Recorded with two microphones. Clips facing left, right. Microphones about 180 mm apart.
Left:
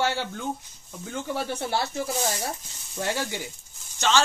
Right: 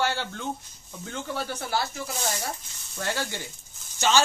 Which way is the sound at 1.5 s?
30° left (ahead or behind).